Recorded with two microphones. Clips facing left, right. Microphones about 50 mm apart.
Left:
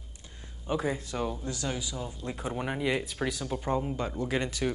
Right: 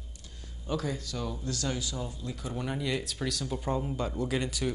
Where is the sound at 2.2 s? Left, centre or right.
Left.